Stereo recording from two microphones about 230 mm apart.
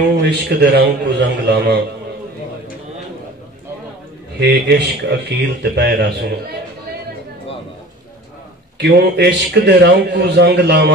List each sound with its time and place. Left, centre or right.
0.2 s a man's voice: right
4.4 s a man's voice: right
8.7 s a man's voice: right